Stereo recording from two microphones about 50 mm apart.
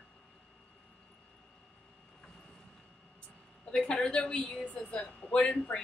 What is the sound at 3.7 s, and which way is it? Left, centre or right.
A woman's voice, centre.